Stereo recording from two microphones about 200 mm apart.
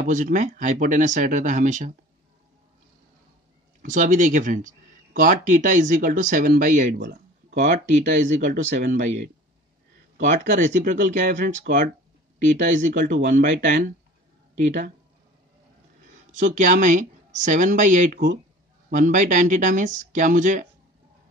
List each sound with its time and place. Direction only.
0.0 s speech: 40° right (ahead or behind)
3.8 s speech: 40° right (ahead or behind)
16.3 s speech: 40° right (ahead or behind)